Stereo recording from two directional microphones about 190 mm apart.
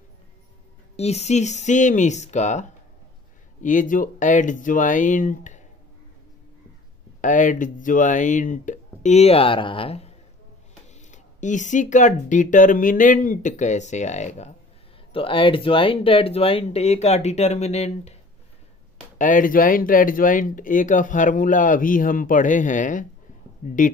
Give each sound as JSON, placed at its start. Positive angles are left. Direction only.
{"t": 0.9, "sound": "speech", "side_deg": 35}
{"t": 3.6, "sound": "speech", "side_deg": 45}
{"t": 7.2, "sound": "speech", "side_deg": 40}
{"t": 19.1, "sound": "speech", "side_deg": 45}